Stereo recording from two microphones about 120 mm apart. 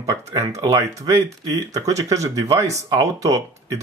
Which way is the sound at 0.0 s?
30° right (ahead or behind).